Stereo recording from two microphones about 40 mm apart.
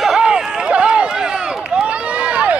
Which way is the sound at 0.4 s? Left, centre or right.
Centre.